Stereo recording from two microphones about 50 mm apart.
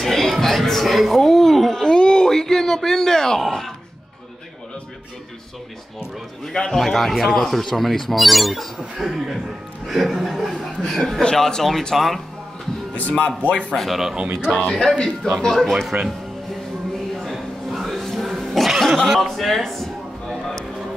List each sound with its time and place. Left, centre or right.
0.0 s a sound: centre
5.9 s speech: centre
13.4 s speech: left
13.7 s speech: centre
14.1 s speech: centre
14.6 s speech: centre
15.9 s speech: right
17.2 s a sound: centre